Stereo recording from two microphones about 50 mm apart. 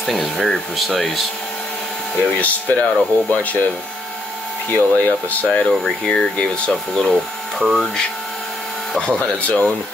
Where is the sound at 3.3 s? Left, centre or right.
Left.